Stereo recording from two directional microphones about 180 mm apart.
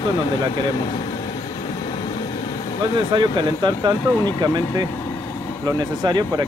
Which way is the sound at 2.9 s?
25° right (ahead or behind).